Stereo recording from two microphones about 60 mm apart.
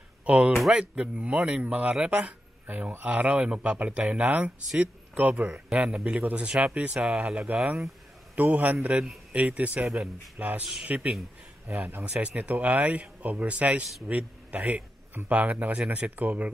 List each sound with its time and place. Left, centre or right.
0.2 s a sound: right
0.6 s speech: centre
0.9 s a man's voice: centre
7.4 s a man's voice: right
11.6 s a man's voice: right